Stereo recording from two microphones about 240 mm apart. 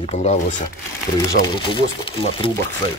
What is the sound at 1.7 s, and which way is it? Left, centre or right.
Speech, left.